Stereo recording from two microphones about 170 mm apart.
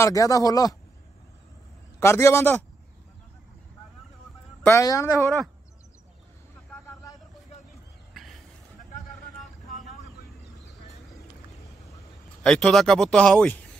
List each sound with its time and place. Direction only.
0.0 s speech: 20° left (ahead or behind)
2.0 s a man's voice: 15° left (ahead or behind)
4.6 s a man's voice: 20° left (ahead or behind)
5.1 s speech: centre (ahead or behind)
6.7 s vehicle: 15° left (ahead or behind)
8.1 s a sound: centre (ahead or behind)
9.4 s vehicle: centre (ahead or behind)
12.4 s speech: centre (ahead or behind)